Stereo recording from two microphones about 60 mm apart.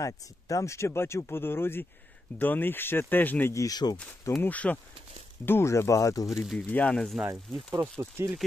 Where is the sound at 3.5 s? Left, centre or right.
Left.